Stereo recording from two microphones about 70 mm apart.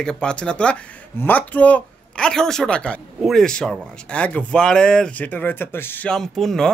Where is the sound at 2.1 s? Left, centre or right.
Centre.